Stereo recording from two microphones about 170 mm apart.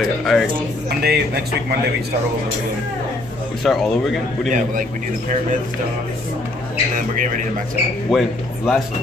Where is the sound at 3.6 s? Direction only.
Centre (ahead or behind).